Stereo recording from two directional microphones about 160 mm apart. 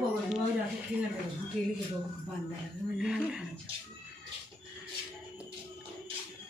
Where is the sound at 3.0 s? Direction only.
5° right (ahead or behind).